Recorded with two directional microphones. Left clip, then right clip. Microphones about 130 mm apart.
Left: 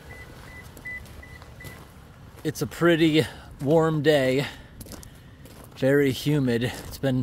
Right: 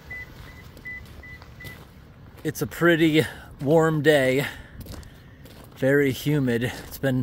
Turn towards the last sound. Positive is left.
turn(degrees=-5)  # may be behind; listen again after turning